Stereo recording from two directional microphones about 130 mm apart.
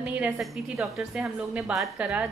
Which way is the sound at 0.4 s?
Centre (ahead or behind).